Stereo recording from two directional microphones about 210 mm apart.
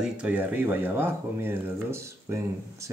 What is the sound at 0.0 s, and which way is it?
Speech, 5° right (ahead or behind).